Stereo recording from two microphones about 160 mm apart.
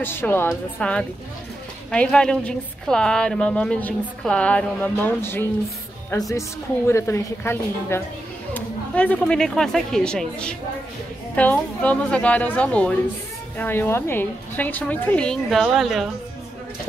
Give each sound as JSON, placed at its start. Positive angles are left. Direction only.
{"t": 0.0, "sound": "a woman's voice", "side_deg": 15}